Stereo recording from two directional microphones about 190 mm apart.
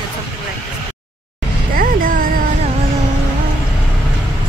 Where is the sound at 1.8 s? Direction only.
50° right (ahead or behind).